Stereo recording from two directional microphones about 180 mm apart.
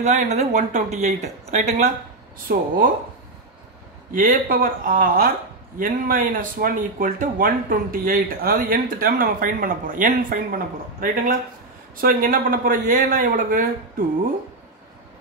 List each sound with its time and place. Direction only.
0.0 s speech: 40° right (ahead or behind)
2.4 s speech: 50° right (ahead or behind)
4.1 s speech: 50° right (ahead or behind)